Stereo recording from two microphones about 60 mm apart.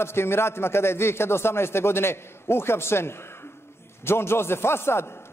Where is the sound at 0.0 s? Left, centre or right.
Left.